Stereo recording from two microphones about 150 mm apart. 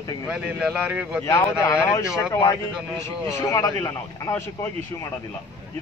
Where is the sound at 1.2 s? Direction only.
20° left (ahead or behind).